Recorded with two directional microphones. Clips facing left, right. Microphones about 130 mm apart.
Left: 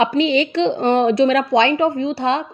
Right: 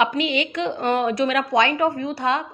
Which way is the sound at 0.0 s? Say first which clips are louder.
Left 5 dB; 30° left (ahead or behind).